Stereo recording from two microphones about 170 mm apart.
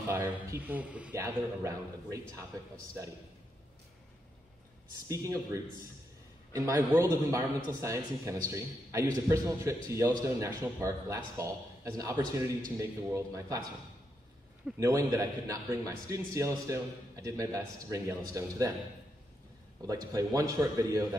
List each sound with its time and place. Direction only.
0.1 s a man's voice: 15° right (ahead or behind)
1.1 s a man's voice: 20° right (ahead or behind)
5.0 s a man's voice: 20° right (ahead or behind)
14.8 s a man's voice: 20° right (ahead or behind)
19.8 s a man's voice: 20° right (ahead or behind)